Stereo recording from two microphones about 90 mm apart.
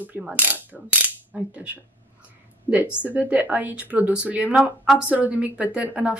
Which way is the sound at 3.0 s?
15° right (ahead or behind).